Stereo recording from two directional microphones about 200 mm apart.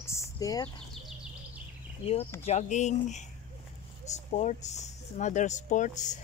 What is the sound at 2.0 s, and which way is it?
Speech, 30° left (ahead or behind).